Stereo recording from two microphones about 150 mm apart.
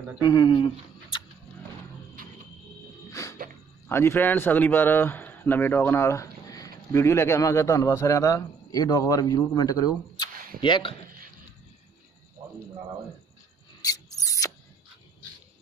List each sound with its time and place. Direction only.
0.2 s speech: 30° left (ahead or behind)
2.2 s music: 70° right (ahead or behind)
3.1 s music: 20° left (ahead or behind)
3.9 s speech: 15° left (ahead or behind); by 11.0 s 35° left (ahead or behind)
13.7 s rub: 25° left (ahead or behind)